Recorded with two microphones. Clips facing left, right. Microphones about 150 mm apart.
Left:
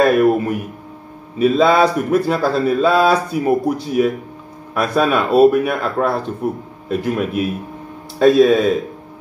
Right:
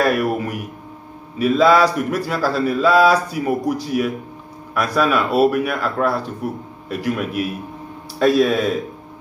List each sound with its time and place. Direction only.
0.0 s speech: 25° left (ahead or behind)